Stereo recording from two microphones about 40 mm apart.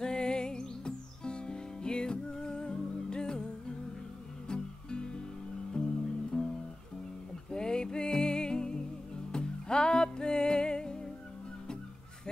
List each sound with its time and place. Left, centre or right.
0.0 s music: left
7.5 s music: centre